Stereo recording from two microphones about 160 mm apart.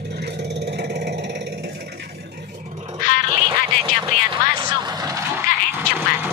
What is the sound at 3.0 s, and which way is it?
Cat, 60° left (ahead or behind).